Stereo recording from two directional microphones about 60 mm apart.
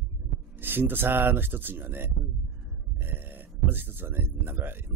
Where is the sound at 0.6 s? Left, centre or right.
Right.